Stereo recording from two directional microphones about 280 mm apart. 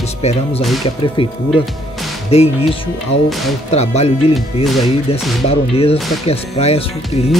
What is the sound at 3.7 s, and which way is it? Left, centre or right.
Speech, left.